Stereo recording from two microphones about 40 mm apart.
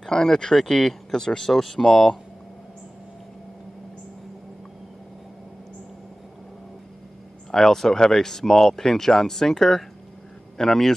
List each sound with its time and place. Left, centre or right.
0.0 s speech: centre
7.5 s speech: centre